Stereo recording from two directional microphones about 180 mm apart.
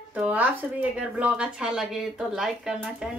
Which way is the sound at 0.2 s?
10° right (ahead or behind).